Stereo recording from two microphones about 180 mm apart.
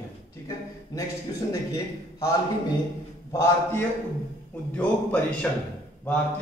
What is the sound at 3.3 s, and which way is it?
A man's voice, 15° left (ahead or behind).